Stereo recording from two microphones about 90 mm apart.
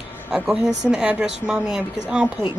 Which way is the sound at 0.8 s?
10° right (ahead or behind).